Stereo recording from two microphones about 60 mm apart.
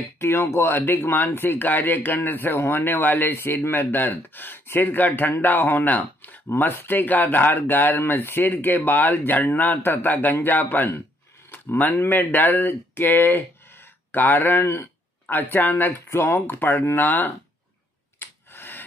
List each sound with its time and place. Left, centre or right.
0.2 s speech: left
8.0 s speech: left
18.2 s a sound: left